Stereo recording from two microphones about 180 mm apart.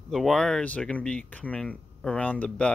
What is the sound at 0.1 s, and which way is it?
Speech, centre (ahead or behind).